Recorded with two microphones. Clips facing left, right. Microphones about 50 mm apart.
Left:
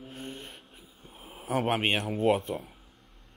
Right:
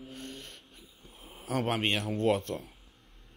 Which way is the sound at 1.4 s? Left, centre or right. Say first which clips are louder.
Left 3 dB; left.